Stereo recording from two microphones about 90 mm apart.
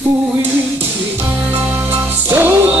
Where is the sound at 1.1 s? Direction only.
20° right (ahead or behind).